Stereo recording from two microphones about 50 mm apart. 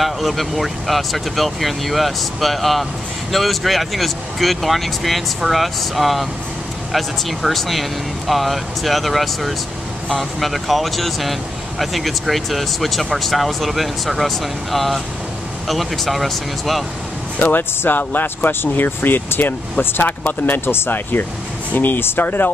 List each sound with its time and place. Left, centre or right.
0.0 s speech: centre
17.4 s speech: left